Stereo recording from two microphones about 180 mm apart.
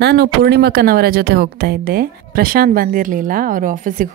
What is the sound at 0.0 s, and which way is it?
Speech, 65° right (ahead or behind).